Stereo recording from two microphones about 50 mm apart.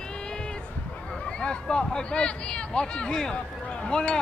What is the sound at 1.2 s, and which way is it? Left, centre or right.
Speech, centre.